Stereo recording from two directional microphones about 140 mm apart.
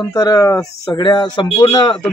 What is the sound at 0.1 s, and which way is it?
A man's voice, 25° left (ahead or behind).